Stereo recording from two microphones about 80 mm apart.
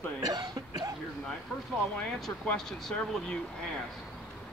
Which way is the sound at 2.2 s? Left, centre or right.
Centre.